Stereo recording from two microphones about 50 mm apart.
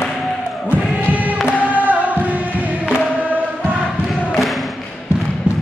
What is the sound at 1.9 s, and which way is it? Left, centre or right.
Music, right.